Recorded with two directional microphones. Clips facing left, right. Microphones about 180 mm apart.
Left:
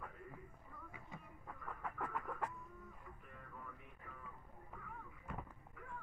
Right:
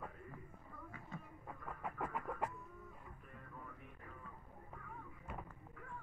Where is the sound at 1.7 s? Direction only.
20° right (ahead or behind).